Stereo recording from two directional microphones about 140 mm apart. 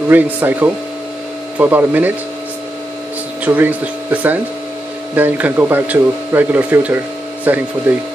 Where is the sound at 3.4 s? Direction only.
10° right (ahead or behind).